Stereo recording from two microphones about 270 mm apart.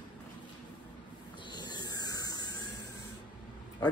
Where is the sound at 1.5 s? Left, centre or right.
Centre.